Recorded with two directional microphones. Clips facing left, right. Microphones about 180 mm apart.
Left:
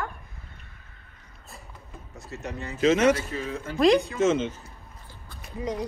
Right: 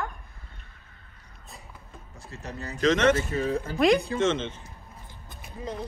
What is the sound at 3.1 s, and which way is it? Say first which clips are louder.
Speech: right 2 dB; 40° right (ahead or behind).